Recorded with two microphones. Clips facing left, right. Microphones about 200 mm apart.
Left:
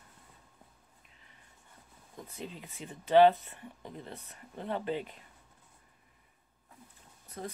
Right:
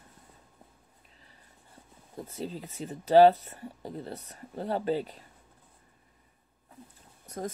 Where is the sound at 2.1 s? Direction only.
35° right (ahead or behind).